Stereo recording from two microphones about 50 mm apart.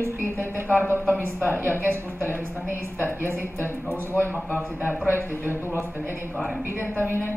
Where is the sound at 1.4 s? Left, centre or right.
Right.